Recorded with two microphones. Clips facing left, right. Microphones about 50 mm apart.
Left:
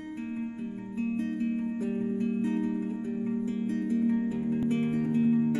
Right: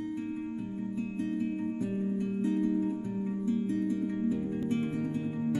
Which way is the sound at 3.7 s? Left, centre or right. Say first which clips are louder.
Left 2 dB; left.